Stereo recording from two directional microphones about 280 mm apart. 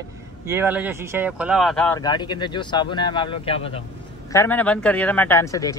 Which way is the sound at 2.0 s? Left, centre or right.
Centre.